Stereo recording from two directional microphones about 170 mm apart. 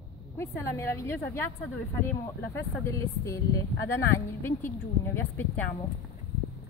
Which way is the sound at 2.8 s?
20° left (ahead or behind).